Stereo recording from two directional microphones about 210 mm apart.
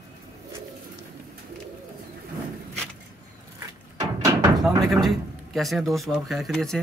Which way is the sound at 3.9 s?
15° right (ahead or behind).